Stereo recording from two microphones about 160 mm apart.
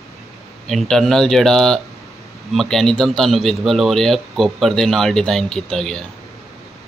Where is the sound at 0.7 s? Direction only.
5° left (ahead or behind).